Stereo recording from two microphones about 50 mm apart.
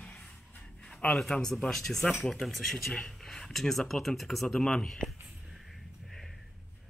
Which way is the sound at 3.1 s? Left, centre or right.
Centre.